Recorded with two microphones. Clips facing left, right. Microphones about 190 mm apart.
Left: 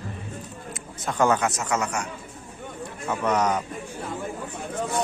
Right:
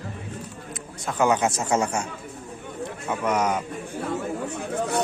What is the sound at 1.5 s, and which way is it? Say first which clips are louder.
Speech: right 3 dB; 30° right (ahead or behind).